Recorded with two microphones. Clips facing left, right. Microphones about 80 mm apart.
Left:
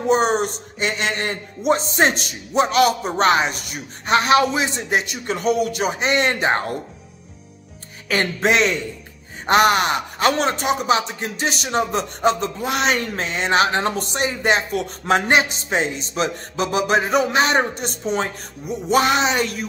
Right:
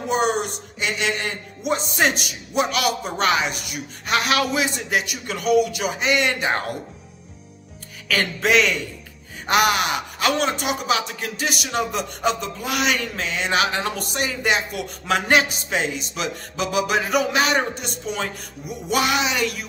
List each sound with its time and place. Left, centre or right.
0.1 s speech: left
8.1 s speech: left